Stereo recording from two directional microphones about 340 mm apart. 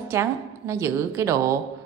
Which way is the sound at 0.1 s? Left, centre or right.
Centre.